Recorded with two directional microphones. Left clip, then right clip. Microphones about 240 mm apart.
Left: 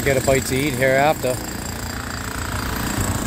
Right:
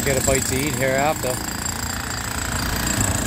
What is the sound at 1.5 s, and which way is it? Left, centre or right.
Vehicle, right.